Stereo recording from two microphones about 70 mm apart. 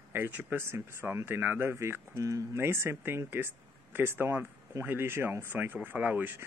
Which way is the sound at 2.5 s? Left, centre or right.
Right.